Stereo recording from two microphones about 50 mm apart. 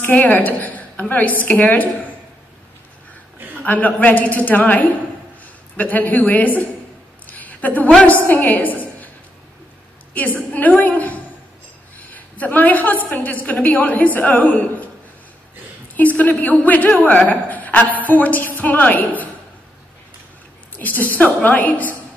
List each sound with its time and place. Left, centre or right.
0.0 s a woman's voice: left
3.6 s a woman's voice: left
7.2 s a sound: left
8.1 s a woman's voice: left
10.1 s a woman's voice: left
15.9 s a woman's voice: left
20.8 s a woman's voice: left